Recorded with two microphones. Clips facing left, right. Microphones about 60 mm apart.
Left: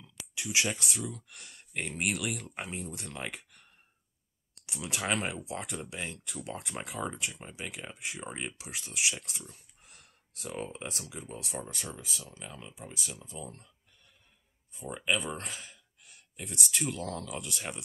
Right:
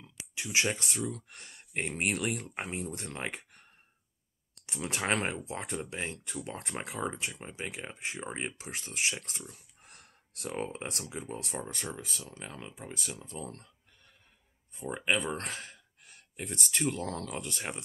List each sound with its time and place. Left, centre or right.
0.0 s speech: right
2.7 s speech: right
4.6 s speech: right
14.9 s speech: right
15.3 s speech: right